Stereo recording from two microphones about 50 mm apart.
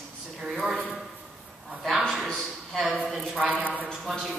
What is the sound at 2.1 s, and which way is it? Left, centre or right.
Speech, centre.